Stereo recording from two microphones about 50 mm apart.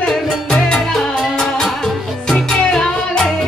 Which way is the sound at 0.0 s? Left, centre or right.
Centre.